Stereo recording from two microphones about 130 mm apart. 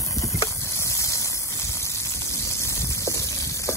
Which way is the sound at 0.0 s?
25° left (ahead or behind).